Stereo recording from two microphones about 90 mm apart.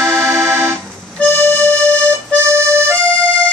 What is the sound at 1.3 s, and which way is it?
Music, 25° left (ahead or behind).